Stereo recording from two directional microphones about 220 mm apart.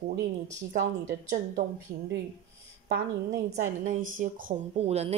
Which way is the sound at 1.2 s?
35° right (ahead or behind).